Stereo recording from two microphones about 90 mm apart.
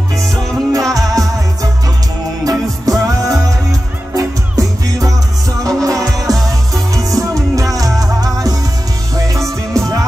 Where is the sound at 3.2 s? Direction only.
40° right (ahead or behind).